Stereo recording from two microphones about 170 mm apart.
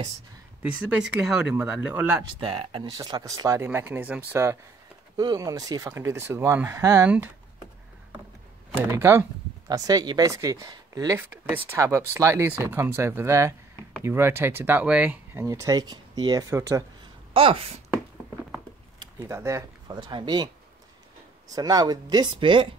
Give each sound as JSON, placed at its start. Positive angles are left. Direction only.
{"t": 0.6, "sound": "speech", "side_deg": -5}
{"t": 2.4, "sound": "speech", "side_deg": -30}
{"t": 8.9, "sound": "speech", "side_deg": -15}
{"t": 17.3, "sound": "speech", "side_deg": -35}
{"t": 18.9, "sound": "speech", "side_deg": -15}
{"t": 21.5, "sound": "speech", "side_deg": -20}